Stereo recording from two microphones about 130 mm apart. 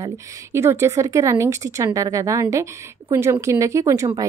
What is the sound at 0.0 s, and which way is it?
A woman's voice, 20° right (ahead or behind).